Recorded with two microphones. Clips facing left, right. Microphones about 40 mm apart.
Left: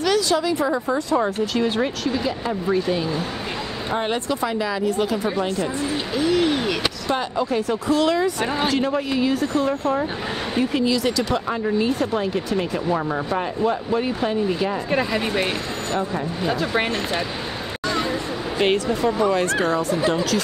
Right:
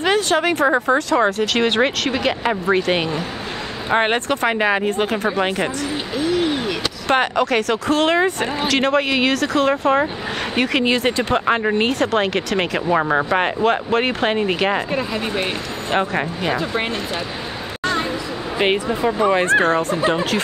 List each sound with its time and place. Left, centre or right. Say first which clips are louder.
0.0 s a sound: right 2 dB; right
0.4 s speech: right 5 dB; right
3.9 s speech: right 6 dB; right
6.2 s a sound: even; centre
7.1 s speech: right 7 dB; right
7.9 s speech: right 2 dB; right
8.6 s speech: right 7 dB; right
10.9 s speech: right 3 dB; right
11.4 s speech: right 4 dB; right
14.9 s speech: left 1 dB; centre
15.9 s speech: right 6 dB; right
18.6 s speech: right 1 dB; right
20.0 s speech: right 2 dB; right